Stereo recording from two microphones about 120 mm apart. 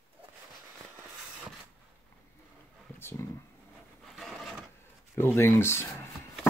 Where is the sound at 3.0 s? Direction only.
20° left (ahead or behind).